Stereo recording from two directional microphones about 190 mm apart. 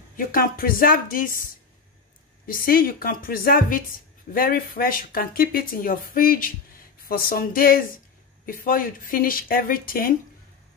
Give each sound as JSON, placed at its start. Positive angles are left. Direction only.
{"t": 0.2, "sound": "speech", "side_deg": 50}